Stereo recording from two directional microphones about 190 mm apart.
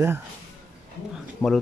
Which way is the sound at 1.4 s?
5° left (ahead or behind).